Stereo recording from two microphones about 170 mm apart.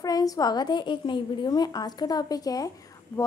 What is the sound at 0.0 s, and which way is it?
A woman's voice, 20° left (ahead or behind).